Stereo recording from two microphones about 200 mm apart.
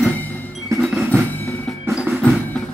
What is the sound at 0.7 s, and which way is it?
Music, 5° right (ahead or behind).